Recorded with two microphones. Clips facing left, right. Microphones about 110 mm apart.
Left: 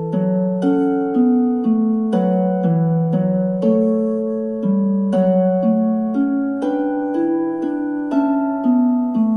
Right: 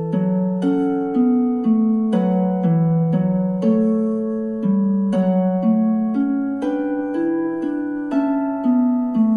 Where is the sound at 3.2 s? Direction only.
35° left (ahead or behind).